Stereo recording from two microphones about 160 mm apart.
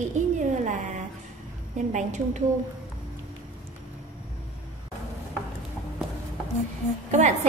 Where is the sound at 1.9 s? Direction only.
50° right (ahead or behind).